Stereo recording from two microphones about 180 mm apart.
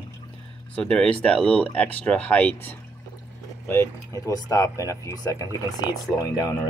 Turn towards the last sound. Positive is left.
turn(degrees=20)  # may be behind; listen again after turning